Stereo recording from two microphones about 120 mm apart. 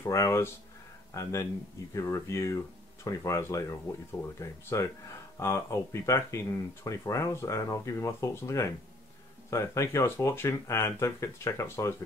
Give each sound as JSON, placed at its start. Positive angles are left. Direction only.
{"t": 0.0, "sound": "speech", "side_deg": 25}